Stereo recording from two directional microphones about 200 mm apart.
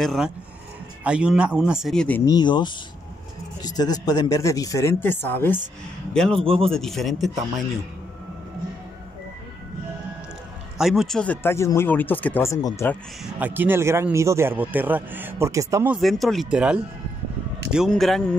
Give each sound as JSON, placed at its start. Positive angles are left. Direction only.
{"t": 0.0, "sound": "speech", "side_deg": 0}
{"t": 2.3, "sound": "speech", "side_deg": 20}
{"t": 6.3, "sound": "a man's voice", "side_deg": -30}
{"t": 6.7, "sound": "speech", "side_deg": 0}
{"t": 10.8, "sound": "speech", "side_deg": 0}
{"t": 13.2, "sound": "speech", "side_deg": -10}
{"t": 16.0, "sound": "speech", "side_deg": 0}